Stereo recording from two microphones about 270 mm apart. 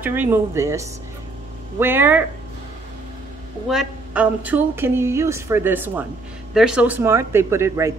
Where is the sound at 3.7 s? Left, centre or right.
Centre.